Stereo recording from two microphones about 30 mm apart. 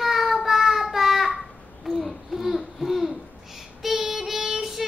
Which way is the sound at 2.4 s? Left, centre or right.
Centre.